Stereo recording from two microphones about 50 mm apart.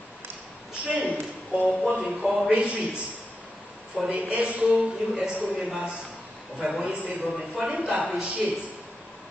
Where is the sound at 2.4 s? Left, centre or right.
Right.